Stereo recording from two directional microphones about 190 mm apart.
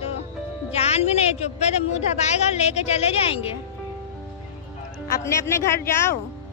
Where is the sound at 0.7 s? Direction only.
35° left (ahead or behind).